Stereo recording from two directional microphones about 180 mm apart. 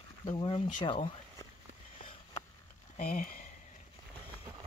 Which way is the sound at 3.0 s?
50° left (ahead or behind).